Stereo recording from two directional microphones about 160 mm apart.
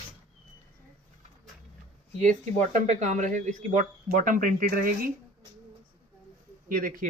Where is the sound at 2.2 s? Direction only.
50° right (ahead or behind).